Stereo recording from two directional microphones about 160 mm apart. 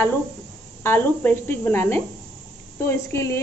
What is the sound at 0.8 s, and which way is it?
A woman's voice, 15° left (ahead or behind).